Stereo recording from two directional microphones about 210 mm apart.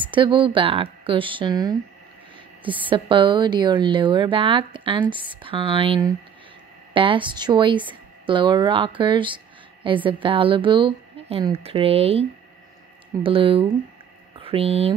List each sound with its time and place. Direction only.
0.1 s speech: 25° right (ahead or behind)
2.9 s speech: 25° right (ahead or behind)